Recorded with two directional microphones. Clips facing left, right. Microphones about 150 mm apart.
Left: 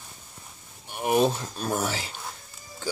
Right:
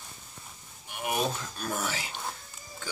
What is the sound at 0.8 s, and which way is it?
Speech, 35° left (ahead or behind).